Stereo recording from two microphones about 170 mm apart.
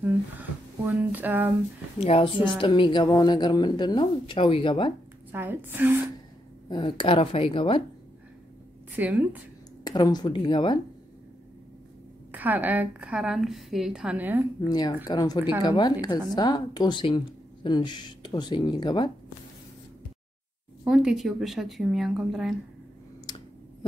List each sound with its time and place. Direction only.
0.0 s a sound: 10° right (ahead or behind)
2.0 s a woman's voice: 35° left (ahead or behind)
5.3 s a woman's voice: 10° right (ahead or behind)
6.7 s a woman's voice: 25° left (ahead or behind)
8.9 s a woman's voice: 10° right (ahead or behind)
9.8 s a woman's voice: 25° left (ahead or behind)
12.3 s a woman's voice: 10° right (ahead or behind)
14.7 s a woman's voice: 25° left (ahead or behind)
20.8 s a woman's voice: 5° right (ahead or behind)
23.3 s clicking: 25° left (ahead or behind)